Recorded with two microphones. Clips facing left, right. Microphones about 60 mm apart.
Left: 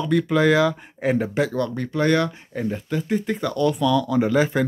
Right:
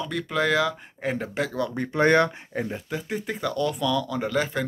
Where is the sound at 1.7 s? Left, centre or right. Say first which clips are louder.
Right 3 dB; right.